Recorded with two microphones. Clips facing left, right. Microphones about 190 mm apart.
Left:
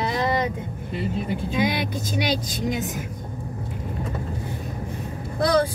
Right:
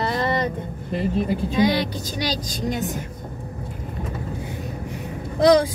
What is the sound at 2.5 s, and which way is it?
Speech, centre (ahead or behind).